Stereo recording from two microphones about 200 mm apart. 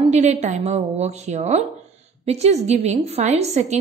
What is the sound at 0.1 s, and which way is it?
A woman's voice, 35° right (ahead or behind).